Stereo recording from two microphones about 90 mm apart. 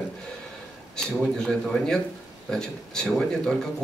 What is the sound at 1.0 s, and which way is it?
Speech, 5° left (ahead or behind).